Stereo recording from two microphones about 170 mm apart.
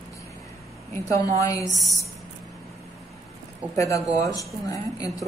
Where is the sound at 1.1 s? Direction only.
20° left (ahead or behind).